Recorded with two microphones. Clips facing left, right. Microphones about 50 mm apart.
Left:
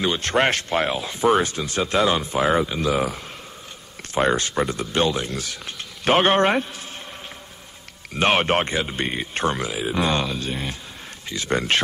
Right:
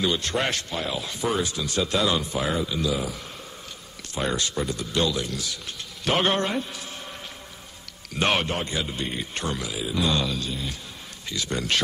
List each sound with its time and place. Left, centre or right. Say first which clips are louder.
0.0 s speech: left 5 dB; left
0.9 s speech: left 6 dB; left
2.7 s speech: left 4 dB; left
8.1 s speech: left 4 dB; left
8.5 s speech: left 7 dB; left